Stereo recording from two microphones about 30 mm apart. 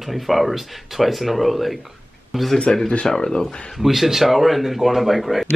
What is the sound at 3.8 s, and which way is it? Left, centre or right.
Speech, centre.